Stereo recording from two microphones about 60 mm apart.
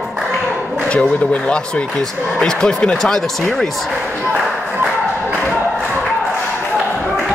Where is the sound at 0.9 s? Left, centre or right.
Left.